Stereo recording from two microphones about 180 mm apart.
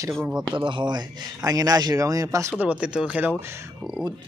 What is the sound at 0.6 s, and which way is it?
Speech, 25° right (ahead or behind).